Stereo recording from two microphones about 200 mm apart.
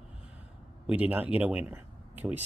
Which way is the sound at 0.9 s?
5° right (ahead or behind).